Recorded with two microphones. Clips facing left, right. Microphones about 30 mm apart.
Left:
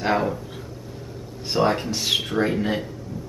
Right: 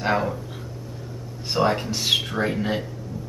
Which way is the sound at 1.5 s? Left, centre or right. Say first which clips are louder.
Left 1 dB; centre.